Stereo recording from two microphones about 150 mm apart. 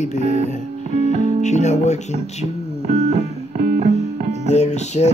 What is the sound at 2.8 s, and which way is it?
Music, 50° right (ahead or behind).